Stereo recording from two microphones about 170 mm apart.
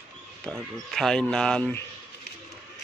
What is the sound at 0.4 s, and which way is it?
Speech, centre (ahead or behind).